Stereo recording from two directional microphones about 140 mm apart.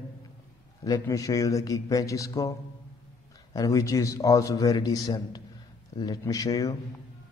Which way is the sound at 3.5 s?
25° left (ahead or behind).